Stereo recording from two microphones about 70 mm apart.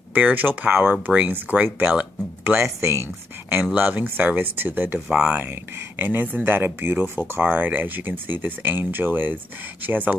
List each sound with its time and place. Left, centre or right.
0.1 s speech: right
2.6 s speech: right
3.7 s speech: right
5.1 s speech: centre
5.5 s speech: right